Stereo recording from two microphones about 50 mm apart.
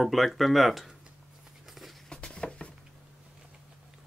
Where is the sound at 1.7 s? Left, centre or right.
Centre.